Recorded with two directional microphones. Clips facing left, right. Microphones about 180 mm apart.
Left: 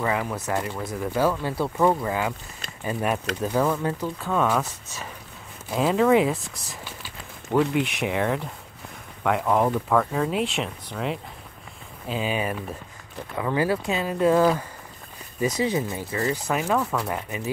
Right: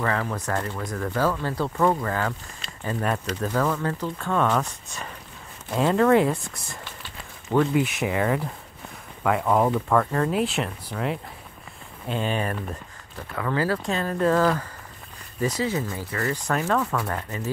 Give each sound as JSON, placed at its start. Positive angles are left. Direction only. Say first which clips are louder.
{"t": 0.0, "sound": "speech", "louder": "even", "side_deg": 15}
{"t": 16.2, "sound": "speech", "louder": "left 1 dB", "side_deg": 10}